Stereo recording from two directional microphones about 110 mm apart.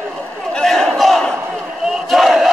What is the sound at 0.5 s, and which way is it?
Battle cry, 5° left (ahead or behind).